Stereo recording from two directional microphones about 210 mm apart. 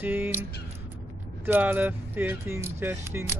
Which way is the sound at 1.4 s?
10° right (ahead or behind).